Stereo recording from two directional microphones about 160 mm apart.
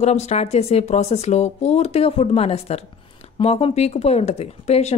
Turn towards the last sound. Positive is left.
turn(degrees=40)  # may be behind; listen again after turning